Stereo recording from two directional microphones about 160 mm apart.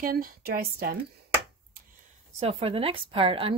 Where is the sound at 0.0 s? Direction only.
65° right (ahead or behind).